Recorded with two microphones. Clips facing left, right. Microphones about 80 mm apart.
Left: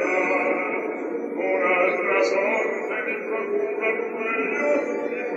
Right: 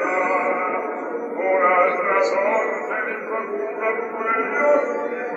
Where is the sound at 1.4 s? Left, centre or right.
Right.